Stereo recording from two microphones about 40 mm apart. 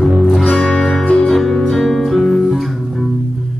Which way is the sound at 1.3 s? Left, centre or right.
Centre.